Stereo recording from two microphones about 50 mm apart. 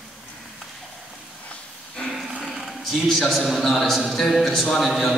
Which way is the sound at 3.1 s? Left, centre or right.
Centre.